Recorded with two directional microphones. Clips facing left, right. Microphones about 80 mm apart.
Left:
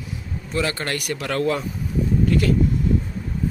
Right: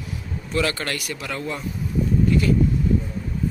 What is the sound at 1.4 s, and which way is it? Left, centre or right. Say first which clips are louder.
Speech: left 11 dB; left.